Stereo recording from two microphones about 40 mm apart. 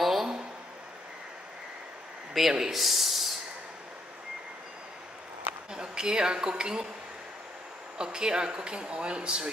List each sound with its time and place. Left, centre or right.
0.0 s a sound: centre
2.4 s speech: centre
5.7 s a woman's voice: centre
8.0 s speech: centre